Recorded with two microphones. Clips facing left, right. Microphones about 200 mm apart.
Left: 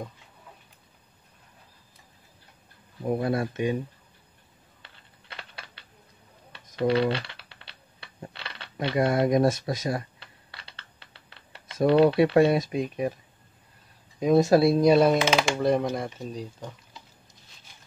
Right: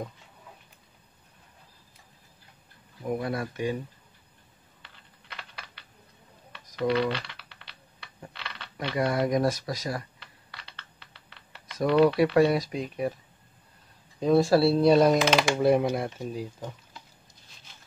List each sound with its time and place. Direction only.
3.0 s speech: 30° left (ahead or behind)
6.6 s typing: 30° left (ahead or behind)
11.6 s speech: 25° left (ahead or behind)
14.2 s speech: 20° left (ahead or behind); by 16.7 s 5° right (ahead or behind)